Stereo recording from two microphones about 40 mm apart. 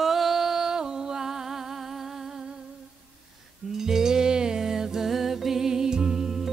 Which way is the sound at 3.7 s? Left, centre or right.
Centre.